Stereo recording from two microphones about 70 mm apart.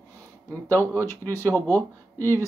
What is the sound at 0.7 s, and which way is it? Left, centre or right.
Speech, left.